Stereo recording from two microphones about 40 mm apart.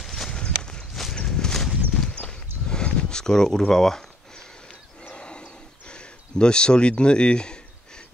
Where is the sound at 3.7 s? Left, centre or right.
Centre.